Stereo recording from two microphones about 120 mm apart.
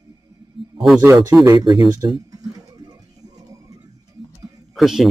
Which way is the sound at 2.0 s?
35° right (ahead or behind).